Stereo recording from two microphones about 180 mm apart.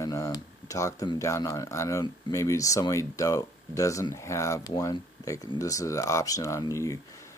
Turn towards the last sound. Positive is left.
turn(degrees=15)  # may be behind; listen again after turning